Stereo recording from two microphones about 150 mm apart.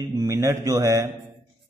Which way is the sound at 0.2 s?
20° right (ahead or behind).